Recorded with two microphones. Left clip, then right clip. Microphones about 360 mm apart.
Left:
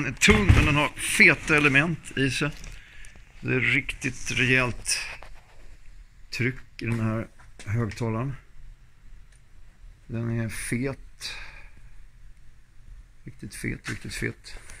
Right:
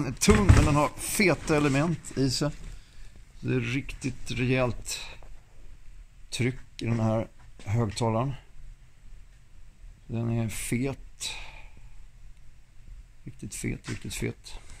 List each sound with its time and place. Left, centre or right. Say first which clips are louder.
0.7 s speech: left 2 dB; centre
6.3 s speech: left 3 dB; centre
10.1 s speech: left 1 dB; centre
13.4 s speech: left 2 dB; centre